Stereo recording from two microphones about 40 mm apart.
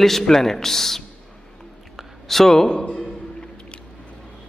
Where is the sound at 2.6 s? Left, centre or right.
Left.